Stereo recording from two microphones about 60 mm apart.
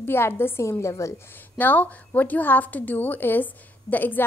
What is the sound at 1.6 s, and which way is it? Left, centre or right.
A woman's voice, left.